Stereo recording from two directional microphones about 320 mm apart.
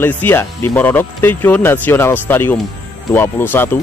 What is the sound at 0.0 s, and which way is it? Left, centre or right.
A man's voice, centre.